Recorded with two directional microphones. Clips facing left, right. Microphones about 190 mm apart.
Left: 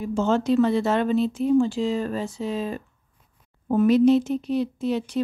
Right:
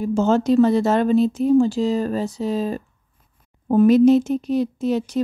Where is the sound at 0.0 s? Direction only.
40° right (ahead or behind).